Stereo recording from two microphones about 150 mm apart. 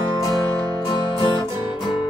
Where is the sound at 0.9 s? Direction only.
30° left (ahead or behind).